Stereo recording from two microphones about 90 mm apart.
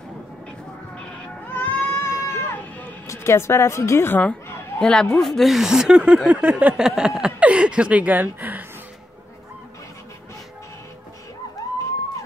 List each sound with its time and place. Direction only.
1.5 s baby cry: 20° left (ahead or behind)
3.1 s speech: 30° left (ahead or behind)
4.7 s speech: 10° left (ahead or behind); by 6.7 s 15° right (ahead or behind)
6.8 s speech: 5° right (ahead or behind)